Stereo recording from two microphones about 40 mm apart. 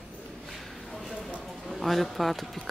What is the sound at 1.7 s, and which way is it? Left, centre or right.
Speech, centre.